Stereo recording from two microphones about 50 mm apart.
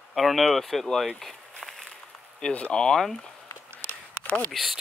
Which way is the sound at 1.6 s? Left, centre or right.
Centre.